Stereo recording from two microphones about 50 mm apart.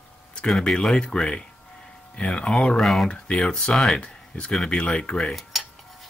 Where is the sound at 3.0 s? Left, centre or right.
Left.